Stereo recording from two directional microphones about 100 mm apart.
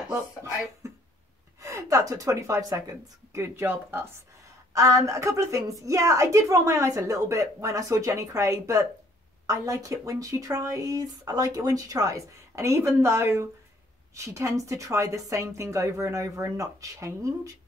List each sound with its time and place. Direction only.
0.8 s music: 30° right (ahead or behind)
1.6 s a woman's voice: 30° right (ahead or behind)
4.7 s a woman's voice: 35° right (ahead or behind)